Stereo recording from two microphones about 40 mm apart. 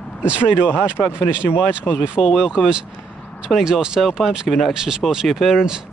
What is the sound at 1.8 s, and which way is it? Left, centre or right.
Speech, right.